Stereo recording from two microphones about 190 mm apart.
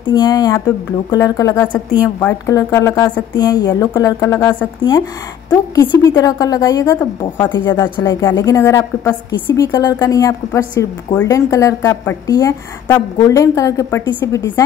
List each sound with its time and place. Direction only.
0.0 s a woman's voice: 20° left (ahead or behind)